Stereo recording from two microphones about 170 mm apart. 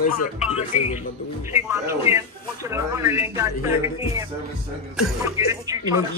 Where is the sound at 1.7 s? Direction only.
15° right (ahead or behind).